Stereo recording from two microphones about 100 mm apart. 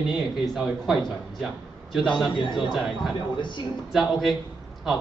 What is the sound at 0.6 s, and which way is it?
A man's voice, 5° right (ahead or behind).